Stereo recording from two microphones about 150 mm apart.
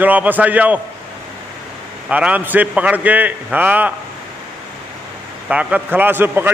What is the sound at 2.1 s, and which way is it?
A man's voice, 10° right (ahead or behind).